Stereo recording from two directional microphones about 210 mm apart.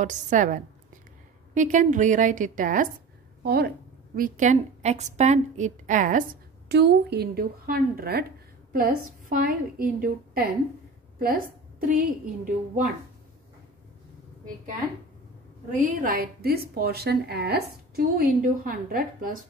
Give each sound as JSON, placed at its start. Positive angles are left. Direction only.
{"t": 0.0, "sound": "a woman's voice", "side_deg": -35}
{"t": 6.7, "sound": "a woman's voice", "side_deg": -50}
{"t": 15.7, "sound": "a woman's voice", "side_deg": -40}